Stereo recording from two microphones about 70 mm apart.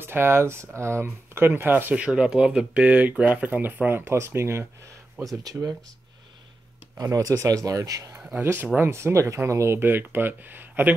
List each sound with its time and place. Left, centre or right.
0.0 s speech: right
4.0 s speech: right
5.4 s speech: right
7.0 s speech: right
8.4 s speech: right